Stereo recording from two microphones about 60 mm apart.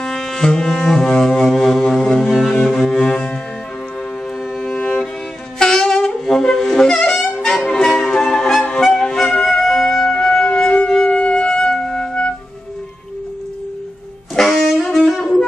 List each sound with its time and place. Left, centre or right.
0.0 s music: centre
4.6 s music: centre
5.6 s wind instrument: centre
6.7 s music: centre
7.2 s music: centre
10.5 s music: centre
10.9 s wind instrument: centre
11.7 s music: centre
14.3 s music: centre
15.0 s wind instrument: centre